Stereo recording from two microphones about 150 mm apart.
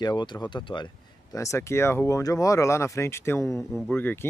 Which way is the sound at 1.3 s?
20° left (ahead or behind).